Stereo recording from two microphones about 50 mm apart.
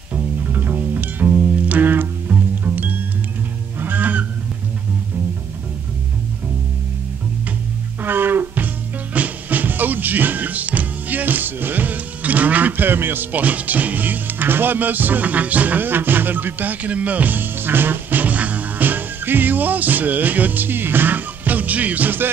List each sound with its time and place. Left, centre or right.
0.1 s music: right
8.0 s music: right
9.1 s music: right